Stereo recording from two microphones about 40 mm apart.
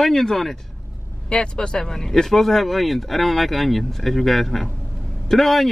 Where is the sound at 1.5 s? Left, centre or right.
Centre.